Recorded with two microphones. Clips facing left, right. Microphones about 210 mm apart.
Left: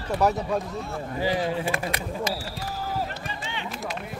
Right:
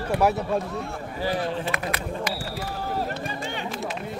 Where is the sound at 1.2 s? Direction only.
15° left (ahead or behind).